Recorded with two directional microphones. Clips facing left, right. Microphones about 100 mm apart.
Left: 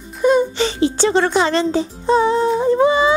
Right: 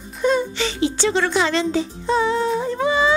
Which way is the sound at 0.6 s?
35° left (ahead or behind).